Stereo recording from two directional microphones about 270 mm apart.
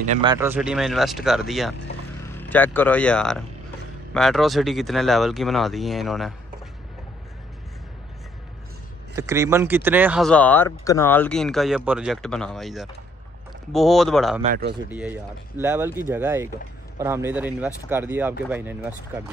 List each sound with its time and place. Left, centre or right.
0.0 s speech: right
0.3 s speech: centre
9.1 s speech: centre
14.4 s speech: right
14.9 s speech: centre